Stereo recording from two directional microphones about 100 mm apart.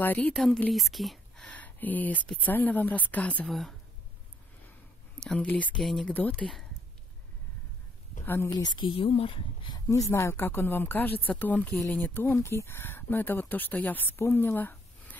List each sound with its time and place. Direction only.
0.0 s speech: 15° left (ahead or behind)
1.6 s speech: 15° left (ahead or behind)
5.2 s speech: 10° left (ahead or behind)
5.8 s speech: 5° left (ahead or behind)
8.5 s speech: 40° left (ahead or behind); by 9.8 s 60° left (ahead or behind)
9.8 s speech: 35° left (ahead or behind)